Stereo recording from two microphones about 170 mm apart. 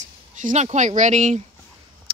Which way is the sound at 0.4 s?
45° right (ahead or behind).